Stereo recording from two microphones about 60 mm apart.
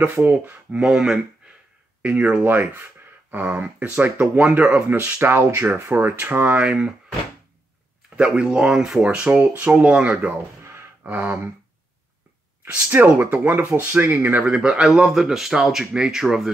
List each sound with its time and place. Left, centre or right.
0.7 s speech: centre
2.0 s a sound: right
2.4 s speech: right
4.4 s speech: centre; by 6.1 s right
6.1 s speech: right
6.6 s speech: centre
8.2 s speech: centre
9.1 s speech: right
10.6 s a sound: right
11.1 s speech: right
12.9 s speech: right
14.4 s speech: centre